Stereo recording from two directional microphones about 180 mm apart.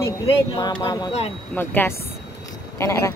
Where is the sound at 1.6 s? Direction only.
10° left (ahead or behind).